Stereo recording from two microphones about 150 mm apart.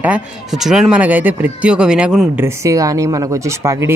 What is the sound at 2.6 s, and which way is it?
Speech, 20° right (ahead or behind).